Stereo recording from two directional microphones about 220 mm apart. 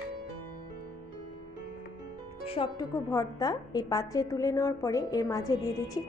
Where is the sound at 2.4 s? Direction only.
25° left (ahead or behind).